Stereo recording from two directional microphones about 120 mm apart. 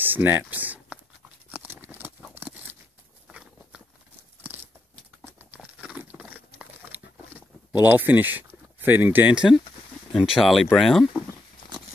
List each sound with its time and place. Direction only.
0.0 s a sound: 15° right (ahead or behind)
3.3 s walk: 5° right (ahead or behind)
5.2 s crumpling: 15° right (ahead or behind)
10.1 s speech: 5° right (ahead or behind)